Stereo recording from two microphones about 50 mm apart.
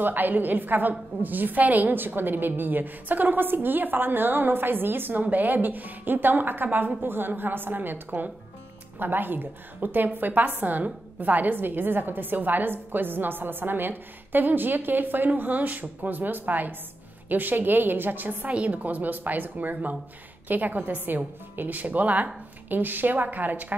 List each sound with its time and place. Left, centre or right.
0.0 s a woman's voice: right
18.5 s a woman's voice: right
22.7 s a woman's voice: right